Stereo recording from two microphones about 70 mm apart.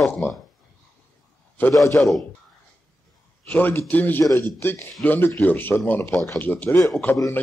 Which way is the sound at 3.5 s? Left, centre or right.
Left.